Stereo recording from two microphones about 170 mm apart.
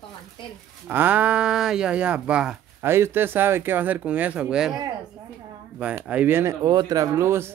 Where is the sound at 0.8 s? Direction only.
10° right (ahead or behind).